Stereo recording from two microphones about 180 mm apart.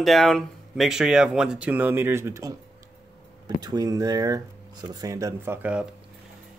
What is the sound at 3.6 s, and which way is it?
Speech, 20° right (ahead or behind).